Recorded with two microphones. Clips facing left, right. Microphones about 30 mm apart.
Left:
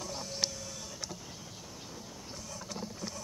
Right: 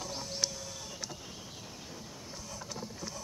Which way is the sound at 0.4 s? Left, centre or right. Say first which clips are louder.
Even; left.